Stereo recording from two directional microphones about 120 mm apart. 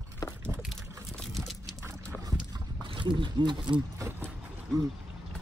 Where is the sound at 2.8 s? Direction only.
40° right (ahead or behind).